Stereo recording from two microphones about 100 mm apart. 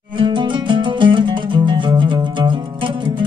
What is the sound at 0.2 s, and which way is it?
Music, 55° right (ahead or behind).